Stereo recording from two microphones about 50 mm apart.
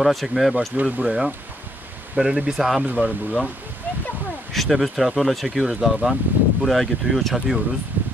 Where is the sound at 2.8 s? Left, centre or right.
Right.